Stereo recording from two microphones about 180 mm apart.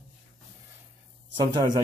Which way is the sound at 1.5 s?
25° right (ahead or behind).